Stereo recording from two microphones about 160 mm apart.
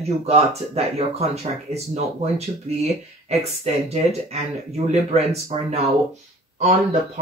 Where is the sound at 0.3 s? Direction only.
40° right (ahead or behind).